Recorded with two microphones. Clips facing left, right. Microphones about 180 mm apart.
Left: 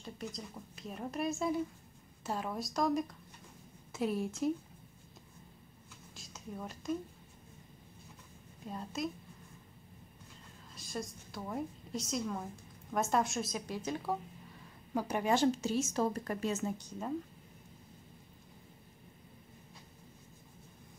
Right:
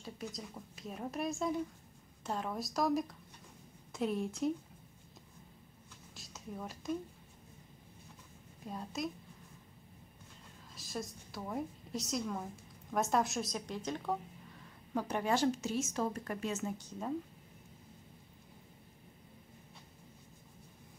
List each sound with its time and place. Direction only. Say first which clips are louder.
0.0 s a woman's voice: left 1 dB; 5° right (ahead or behind)
6.1 s a sound: even; centre (ahead or behind)
8.6 s a woman's voice: left 1 dB; centre (ahead or behind)
10.7 s a woman's voice: left 1 dB; centre (ahead or behind)
15.3 s speech: left 3 dB; 30° left (ahead or behind)